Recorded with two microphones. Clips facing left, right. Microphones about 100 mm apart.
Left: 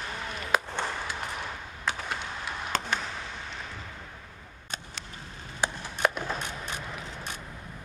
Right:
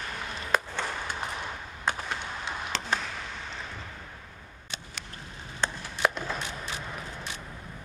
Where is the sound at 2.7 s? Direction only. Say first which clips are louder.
Left 4 dB; 45° left (ahead or behind).